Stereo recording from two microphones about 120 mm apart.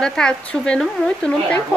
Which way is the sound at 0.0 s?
5° left (ahead or behind).